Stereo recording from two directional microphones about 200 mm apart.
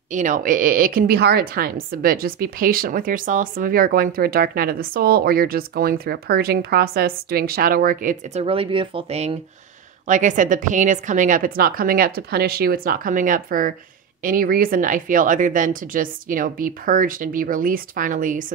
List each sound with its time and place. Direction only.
0.1 s a woman's voice: 40° right (ahead or behind)
8.5 s a woman's voice: 25° right (ahead or behind)